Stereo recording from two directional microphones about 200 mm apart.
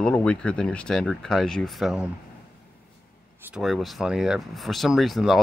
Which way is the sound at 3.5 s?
Centre (ahead or behind).